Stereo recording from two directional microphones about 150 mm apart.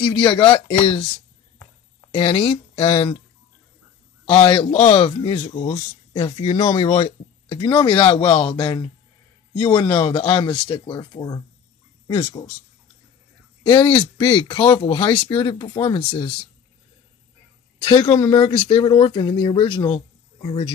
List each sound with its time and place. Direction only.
0.0 s speech: 35° left (ahead or behind)
2.1 s speech: 35° left (ahead or behind)
4.3 s speech: 35° left (ahead or behind)
6.6 s speech: 25° left (ahead or behind)
7.1 s speech: 35° left (ahead or behind)
13.7 s speech: 30° left (ahead or behind)
17.8 s speech: 35° left (ahead or behind)